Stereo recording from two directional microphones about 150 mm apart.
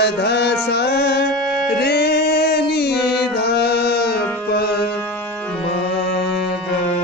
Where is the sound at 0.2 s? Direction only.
90° left.